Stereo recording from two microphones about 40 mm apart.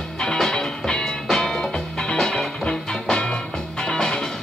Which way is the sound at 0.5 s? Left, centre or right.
Centre.